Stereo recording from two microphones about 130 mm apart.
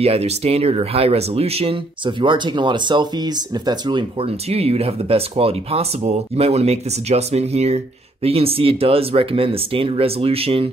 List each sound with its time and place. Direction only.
0.0 s speech: 55° right (ahead or behind); by 4.3 s 35° right (ahead or behind)
4.5 s speech: 50° right (ahead or behind)